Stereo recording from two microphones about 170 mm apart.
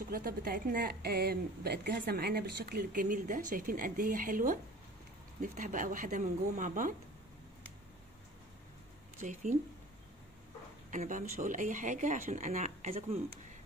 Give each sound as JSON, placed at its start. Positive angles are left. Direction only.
{"t": 0.1, "sound": "a woman's voice", "side_deg": -60}
{"t": 9.2, "sound": "speech", "side_deg": -50}
{"t": 10.9, "sound": "speech", "side_deg": -45}